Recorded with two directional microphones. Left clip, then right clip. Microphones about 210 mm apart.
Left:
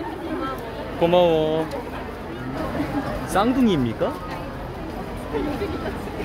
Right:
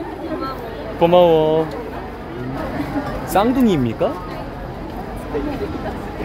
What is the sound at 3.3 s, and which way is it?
Speech, 25° right (ahead or behind).